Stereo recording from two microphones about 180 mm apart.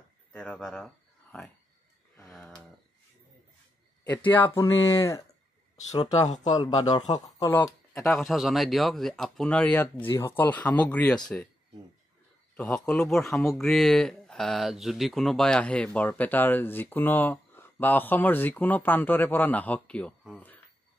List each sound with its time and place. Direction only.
0.3 s speech: 5° left (ahead or behind)
2.3 s a sound: 5° left (ahead or behind)
4.0 s a man's voice: 10° left (ahead or behind)
8.1 s speech: centre (ahead or behind)
12.5 s speech: 5° left (ahead or behind)
13.3 s speech: 15° left (ahead or behind)
13.6 s speech: centre (ahead or behind)